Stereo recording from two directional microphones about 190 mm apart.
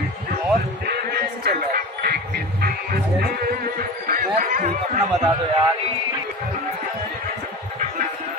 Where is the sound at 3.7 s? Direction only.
45° right (ahead or behind).